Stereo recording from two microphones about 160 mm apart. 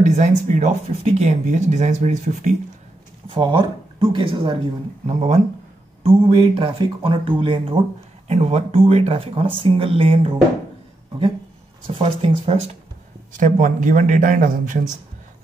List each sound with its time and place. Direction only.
0.0 s speech: 50° right (ahead or behind)
3.3 s speech: 30° right (ahead or behind)
5.0 s speech: 50° right (ahead or behind)
6.0 s speech: 35° right (ahead or behind)
12.0 s speech: 35° right (ahead or behind)
13.3 s speech: 55° right (ahead or behind)